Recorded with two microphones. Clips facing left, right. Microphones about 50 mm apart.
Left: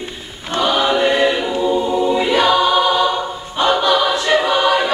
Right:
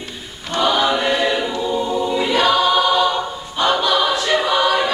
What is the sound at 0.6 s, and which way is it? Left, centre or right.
Choir, centre.